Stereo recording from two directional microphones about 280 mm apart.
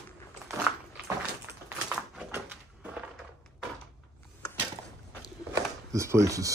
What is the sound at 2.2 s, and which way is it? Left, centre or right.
Cupboard open or close, centre.